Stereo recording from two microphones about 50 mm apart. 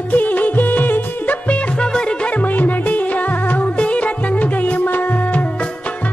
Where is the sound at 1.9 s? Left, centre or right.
Centre.